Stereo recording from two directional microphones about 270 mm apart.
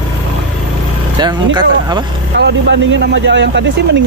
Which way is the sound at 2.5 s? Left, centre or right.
Right.